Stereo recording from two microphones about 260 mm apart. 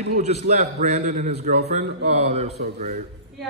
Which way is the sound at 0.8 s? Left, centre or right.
Right.